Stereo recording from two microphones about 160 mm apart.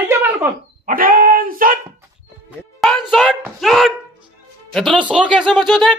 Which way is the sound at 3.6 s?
Centre (ahead or behind).